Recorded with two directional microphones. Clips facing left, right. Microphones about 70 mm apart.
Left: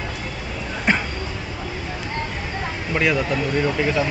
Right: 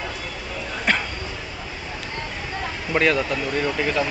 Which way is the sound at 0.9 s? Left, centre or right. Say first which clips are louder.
Left 2 dB; centre.